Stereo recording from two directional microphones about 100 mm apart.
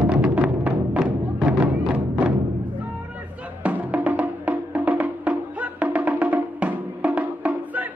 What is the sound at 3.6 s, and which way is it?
Music, 15° right (ahead or behind).